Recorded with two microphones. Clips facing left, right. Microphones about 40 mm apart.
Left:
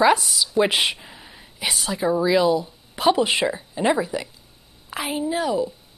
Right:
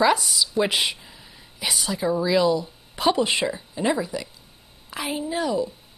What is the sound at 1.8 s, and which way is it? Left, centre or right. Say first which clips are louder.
A woman's voice: left 3 dB; centre.